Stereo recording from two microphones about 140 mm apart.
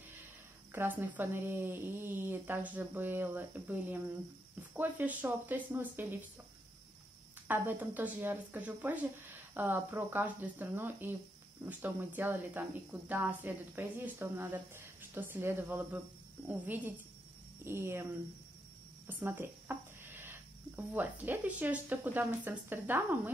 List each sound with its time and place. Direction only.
0.7 s a woman's voice: 15° right (ahead or behind)
7.4 s a woman's voice: 15° right (ahead or behind)
19.0 s speech: 15° right (ahead or behind)